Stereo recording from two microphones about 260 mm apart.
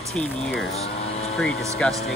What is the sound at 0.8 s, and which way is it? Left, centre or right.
Vehicle, left.